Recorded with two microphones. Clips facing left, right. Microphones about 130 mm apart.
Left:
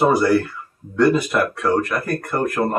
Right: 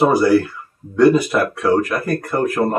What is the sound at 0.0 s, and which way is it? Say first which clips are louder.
Speech: right 2 dB; 5° right (ahead or behind).